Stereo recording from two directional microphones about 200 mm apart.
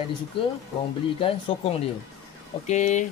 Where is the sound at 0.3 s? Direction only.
25° left (ahead or behind).